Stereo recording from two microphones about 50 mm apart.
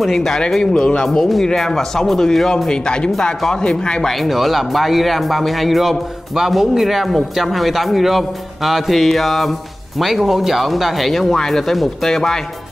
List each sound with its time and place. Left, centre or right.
0.0 s speech: centre
4.0 s speech: centre